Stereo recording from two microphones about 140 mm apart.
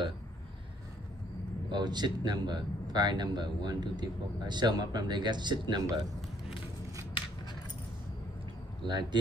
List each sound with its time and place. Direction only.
1.7 s speech: 30° right (ahead or behind)
8.8 s speech: 35° right (ahead or behind)